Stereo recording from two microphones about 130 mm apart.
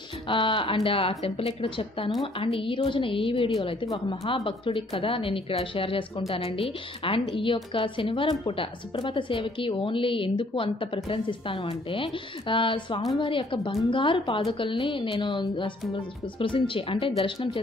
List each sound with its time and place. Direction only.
0.3 s a woman's voice: 40° left (ahead or behind)